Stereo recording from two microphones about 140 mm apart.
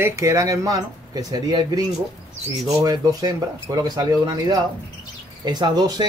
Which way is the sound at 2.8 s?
25° right (ahead or behind).